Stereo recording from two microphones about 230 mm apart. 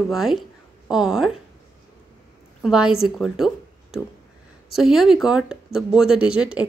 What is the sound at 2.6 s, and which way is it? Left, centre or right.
A woman's voice, centre.